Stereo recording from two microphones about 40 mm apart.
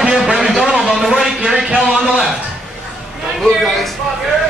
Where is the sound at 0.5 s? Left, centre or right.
Centre.